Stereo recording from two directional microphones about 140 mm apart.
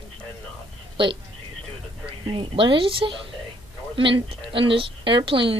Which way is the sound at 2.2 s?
40° right (ahead or behind).